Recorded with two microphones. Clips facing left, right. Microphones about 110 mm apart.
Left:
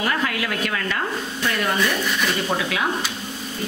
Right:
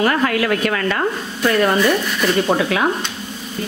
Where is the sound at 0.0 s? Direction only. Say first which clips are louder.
Right 7 dB; 50° right (ahead or behind).